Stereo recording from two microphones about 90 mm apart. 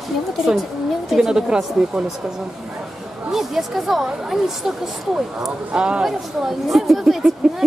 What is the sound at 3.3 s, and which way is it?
A woman's voice, 5° right (ahead or behind).